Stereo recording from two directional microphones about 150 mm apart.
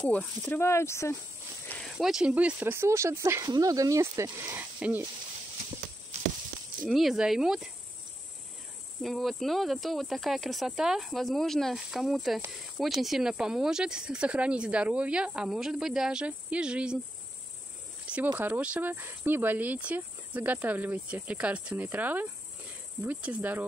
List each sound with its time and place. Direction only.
0.0 s speech: 10° left (ahead or behind)
1.8 s speech: centre (ahead or behind)
6.9 s speech: centre (ahead or behind)
9.0 s speech: centre (ahead or behind)
18.0 s cricket: 10° right (ahead or behind)
18.3 s speech: 15° right (ahead or behind)